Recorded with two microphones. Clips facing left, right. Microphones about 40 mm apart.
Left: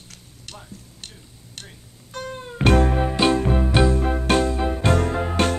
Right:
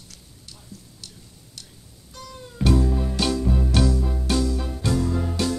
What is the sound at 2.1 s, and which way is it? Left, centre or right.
Music, left.